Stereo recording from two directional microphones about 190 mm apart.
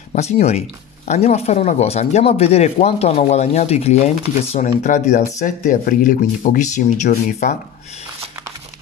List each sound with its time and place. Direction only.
0.1 s speech: 35° left (ahead or behind)